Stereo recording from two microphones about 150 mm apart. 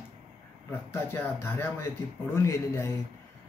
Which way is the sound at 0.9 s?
15° left (ahead or behind).